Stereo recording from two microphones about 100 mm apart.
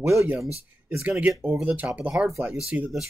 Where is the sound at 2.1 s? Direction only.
5° right (ahead or behind).